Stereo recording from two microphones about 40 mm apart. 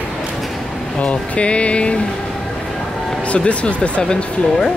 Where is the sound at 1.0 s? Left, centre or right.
Left.